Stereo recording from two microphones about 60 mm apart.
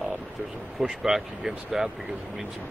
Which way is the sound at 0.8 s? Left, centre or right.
Centre.